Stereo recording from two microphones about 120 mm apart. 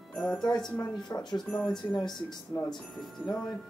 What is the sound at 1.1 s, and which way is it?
Speech, 40° left (ahead or behind).